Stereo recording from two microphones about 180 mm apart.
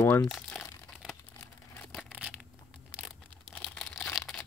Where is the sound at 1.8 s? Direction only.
Centre (ahead or behind).